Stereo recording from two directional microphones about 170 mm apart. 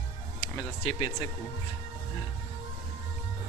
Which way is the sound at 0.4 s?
25° left (ahead or behind).